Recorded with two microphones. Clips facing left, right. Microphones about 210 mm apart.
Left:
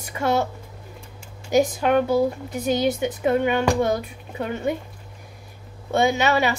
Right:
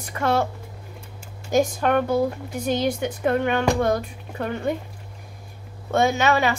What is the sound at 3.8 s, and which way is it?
Speech, 20° left (ahead or behind).